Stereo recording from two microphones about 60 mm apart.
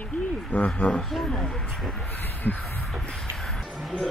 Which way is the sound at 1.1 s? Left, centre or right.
Centre.